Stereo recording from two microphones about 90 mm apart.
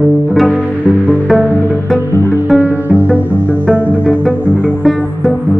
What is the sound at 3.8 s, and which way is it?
Pizzicato, 20° right (ahead or behind).